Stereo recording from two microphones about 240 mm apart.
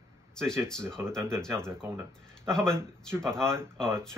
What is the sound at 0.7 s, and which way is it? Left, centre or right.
Speech, centre.